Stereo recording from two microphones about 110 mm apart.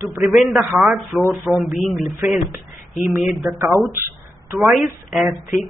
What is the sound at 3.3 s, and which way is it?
Speech, 30° right (ahead or behind).